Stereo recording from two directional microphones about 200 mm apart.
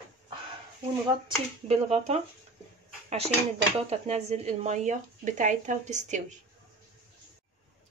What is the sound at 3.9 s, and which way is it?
Speech, 30° right (ahead or behind).